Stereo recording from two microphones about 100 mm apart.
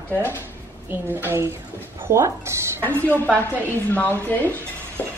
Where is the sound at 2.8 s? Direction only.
15° left (ahead or behind).